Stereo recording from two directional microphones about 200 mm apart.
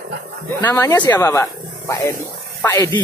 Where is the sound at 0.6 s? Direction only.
10° left (ahead or behind).